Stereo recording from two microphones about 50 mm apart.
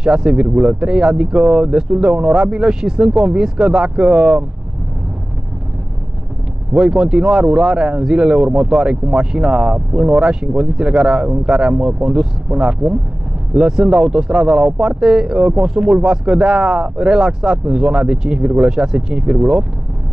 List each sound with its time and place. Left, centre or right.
0.0 s speech: centre
6.7 s speech: centre